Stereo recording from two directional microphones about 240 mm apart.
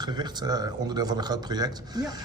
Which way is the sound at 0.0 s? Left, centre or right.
Centre.